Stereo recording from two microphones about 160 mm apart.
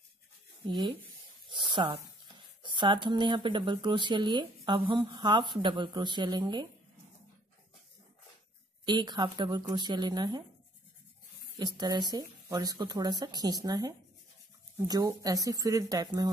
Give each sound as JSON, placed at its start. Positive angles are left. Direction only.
{"t": 0.7, "sound": "speech", "side_deg": -30}
{"t": 8.8, "sound": "speech", "side_deg": -25}
{"t": 11.5, "sound": "speech", "side_deg": -25}